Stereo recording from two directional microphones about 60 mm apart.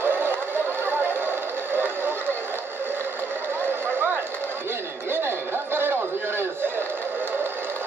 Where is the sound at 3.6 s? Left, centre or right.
Right.